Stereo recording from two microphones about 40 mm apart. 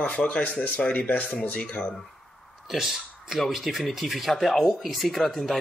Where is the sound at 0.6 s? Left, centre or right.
Left.